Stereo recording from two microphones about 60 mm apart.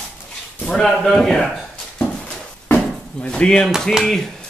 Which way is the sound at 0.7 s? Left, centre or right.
Centre.